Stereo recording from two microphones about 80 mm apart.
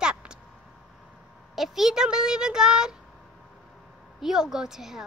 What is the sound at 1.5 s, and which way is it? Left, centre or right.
A child's voice, centre.